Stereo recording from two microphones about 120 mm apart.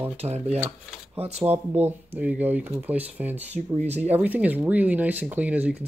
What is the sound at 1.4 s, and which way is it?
Speech, 15° right (ahead or behind).